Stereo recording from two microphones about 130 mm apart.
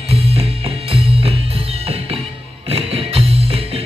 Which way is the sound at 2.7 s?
50° right (ahead or behind).